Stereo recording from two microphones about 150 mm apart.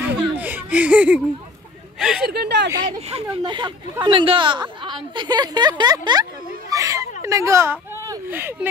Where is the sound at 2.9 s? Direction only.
45° right (ahead or behind).